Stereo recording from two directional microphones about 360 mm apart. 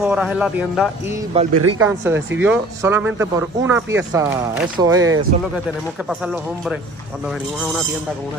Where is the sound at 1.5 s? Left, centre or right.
Right.